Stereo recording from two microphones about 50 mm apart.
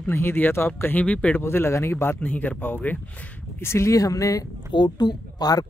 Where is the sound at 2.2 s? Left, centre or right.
Left.